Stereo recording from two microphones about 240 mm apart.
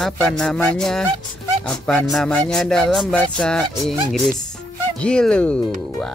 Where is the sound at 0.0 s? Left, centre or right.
Centre.